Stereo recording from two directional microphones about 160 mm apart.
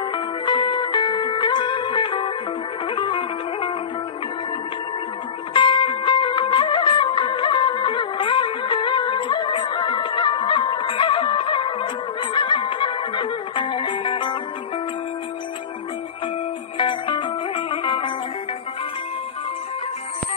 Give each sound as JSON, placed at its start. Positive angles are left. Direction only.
{"t": 0.1, "sound": "music", "side_deg": 30}
{"t": 5.5, "sound": "music", "side_deg": 30}
{"t": 16.7, "sound": "music", "side_deg": 30}